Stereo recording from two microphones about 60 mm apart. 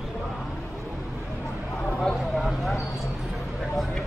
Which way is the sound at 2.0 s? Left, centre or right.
Centre.